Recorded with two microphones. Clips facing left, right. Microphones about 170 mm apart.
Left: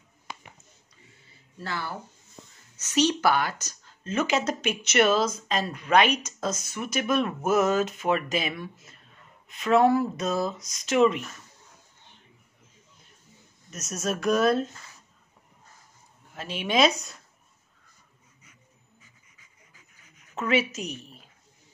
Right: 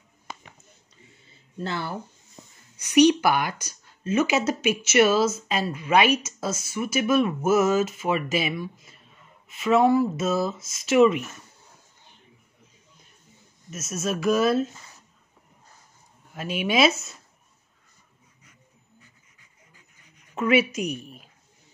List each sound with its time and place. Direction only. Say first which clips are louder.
1.6 s speech: right 4 dB; 20° right (ahead or behind)
2.4 s a sound: even; 5° right (ahead or behind)
2.8 s speech: right 6 dB; 15° right (ahead or behind)
13.7 s speech: right 2 dB; centre (ahead or behind)
16.3 s speech: right 1 dB; 10° right (ahead or behind)
20.3 s speech: right 4 dB; 10° right (ahead or behind)